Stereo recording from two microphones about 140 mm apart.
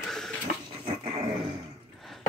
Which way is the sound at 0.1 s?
5° left (ahead or behind).